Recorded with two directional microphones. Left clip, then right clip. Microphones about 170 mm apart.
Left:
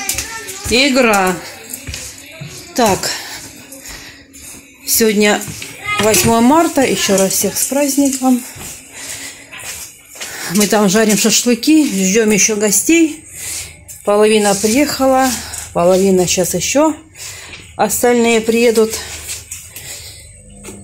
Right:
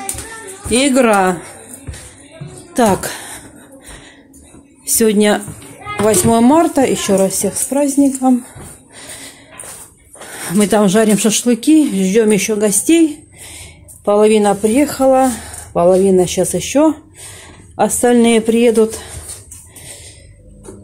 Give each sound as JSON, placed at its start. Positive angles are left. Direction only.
{"t": 0.7, "sound": "speech", "side_deg": -15}
{"t": 2.7, "sound": "music", "side_deg": -20}
{"t": 4.9, "sound": "speech", "side_deg": -20}
{"t": 10.3, "sound": "speech", "side_deg": -15}
{"t": 14.0, "sound": "speech", "side_deg": -15}
{"t": 18.1, "sound": "speech", "side_deg": -25}